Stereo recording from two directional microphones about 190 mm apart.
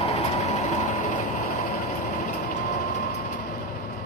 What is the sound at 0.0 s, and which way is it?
Train, 35° left (ahead or behind).